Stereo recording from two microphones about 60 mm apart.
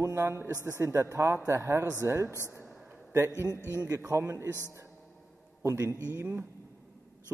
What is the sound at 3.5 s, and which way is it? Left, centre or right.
Speech, left.